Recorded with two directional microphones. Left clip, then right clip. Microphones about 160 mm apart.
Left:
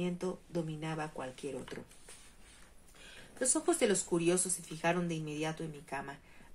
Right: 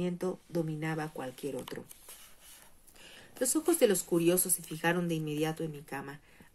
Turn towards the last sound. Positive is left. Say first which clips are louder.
# right 2 dB
turn(degrees=-35)  # may be behind; listen again after turning